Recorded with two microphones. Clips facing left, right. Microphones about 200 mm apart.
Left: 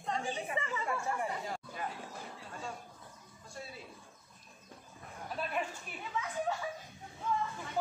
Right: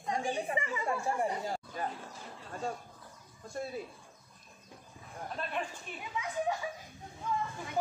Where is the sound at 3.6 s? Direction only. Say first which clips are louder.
Right 9 dB; 50° right (ahead or behind).